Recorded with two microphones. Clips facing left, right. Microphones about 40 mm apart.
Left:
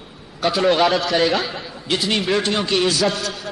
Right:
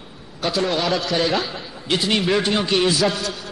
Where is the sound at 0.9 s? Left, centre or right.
Centre.